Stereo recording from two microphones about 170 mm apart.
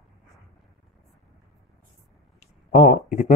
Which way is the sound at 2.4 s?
45° left (ahead or behind).